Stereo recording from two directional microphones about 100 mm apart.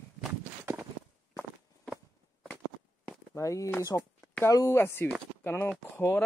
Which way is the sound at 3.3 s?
30° left (ahead or behind).